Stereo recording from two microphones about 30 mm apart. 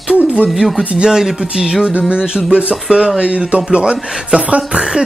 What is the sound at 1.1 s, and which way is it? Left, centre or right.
Speech, centre.